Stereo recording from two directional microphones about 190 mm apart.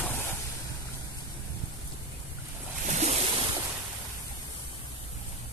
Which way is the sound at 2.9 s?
35° right (ahead or behind).